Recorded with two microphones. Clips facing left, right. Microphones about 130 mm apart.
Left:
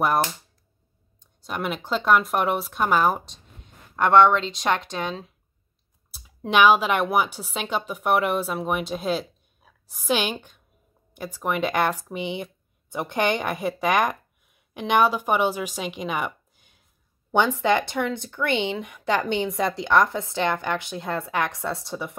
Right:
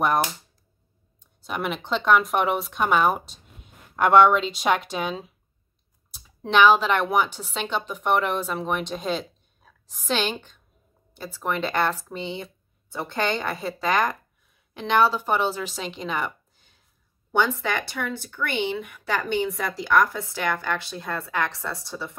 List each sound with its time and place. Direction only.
1.4 s speech: centre (ahead or behind)
6.1 s speech: 5° left (ahead or behind)